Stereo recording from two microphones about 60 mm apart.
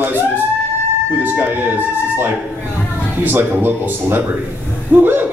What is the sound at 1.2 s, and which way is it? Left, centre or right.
Speech, right.